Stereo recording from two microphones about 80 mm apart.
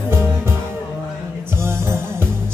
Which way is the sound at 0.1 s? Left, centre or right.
Right.